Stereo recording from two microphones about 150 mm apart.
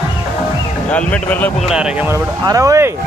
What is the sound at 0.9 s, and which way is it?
Speech, 10° left (ahead or behind).